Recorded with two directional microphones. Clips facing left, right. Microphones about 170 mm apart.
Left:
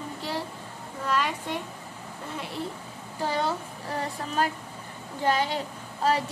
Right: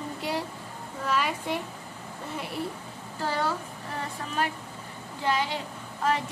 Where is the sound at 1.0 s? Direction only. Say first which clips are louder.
Even; 5° right (ahead or behind).